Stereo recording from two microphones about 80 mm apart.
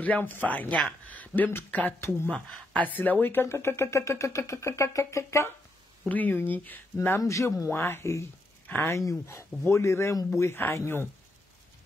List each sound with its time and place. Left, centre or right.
0.0 s speech: left
2.0 s speech: left
2.2 s speech: centre; by 5.5 s left
6.0 s speech: left
7.2 s speech: left
7.6 s speech: left
8.6 s speech: left